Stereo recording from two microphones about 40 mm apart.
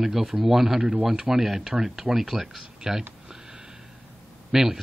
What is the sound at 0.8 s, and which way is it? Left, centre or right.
Speech, right.